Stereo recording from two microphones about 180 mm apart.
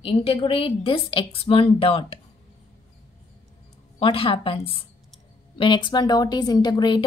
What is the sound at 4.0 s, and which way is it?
A woman's voice, 30° left (ahead or behind).